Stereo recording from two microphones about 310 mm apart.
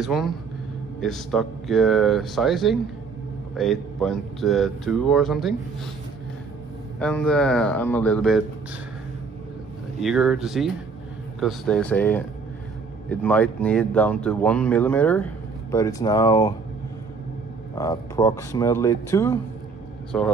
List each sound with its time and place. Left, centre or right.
0.0 s speech: centre
7.0 s speech: centre
9.9 s speech: centre
17.7 s speech: centre